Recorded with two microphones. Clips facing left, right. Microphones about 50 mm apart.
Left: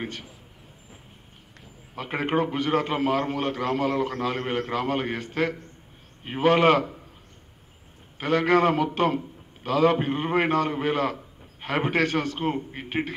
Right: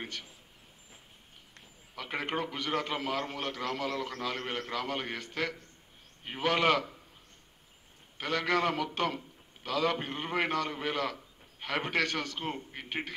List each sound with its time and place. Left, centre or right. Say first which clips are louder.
0.0 s a man's voice: left 7 dB; centre
2.0 s a man's voice: left 9 dB; left
8.2 s a man's voice: left 9 dB; centre